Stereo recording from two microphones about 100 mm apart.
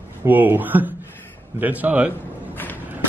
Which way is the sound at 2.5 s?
20° left (ahead or behind).